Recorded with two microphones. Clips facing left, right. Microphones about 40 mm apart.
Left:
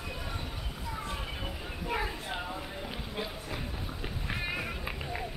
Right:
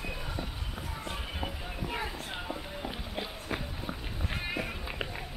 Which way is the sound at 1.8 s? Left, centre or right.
Centre.